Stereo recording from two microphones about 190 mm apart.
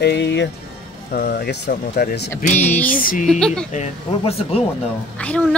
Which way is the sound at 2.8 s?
45° left (ahead or behind).